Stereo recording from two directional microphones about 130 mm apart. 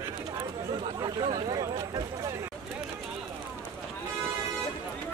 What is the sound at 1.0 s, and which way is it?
Speech, 30° right (ahead or behind).